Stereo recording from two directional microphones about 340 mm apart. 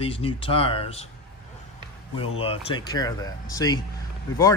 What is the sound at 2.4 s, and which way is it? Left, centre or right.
Speech, centre.